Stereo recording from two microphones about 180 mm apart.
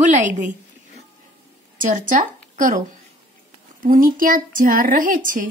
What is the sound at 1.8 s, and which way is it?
Speech, 45° right (ahead or behind).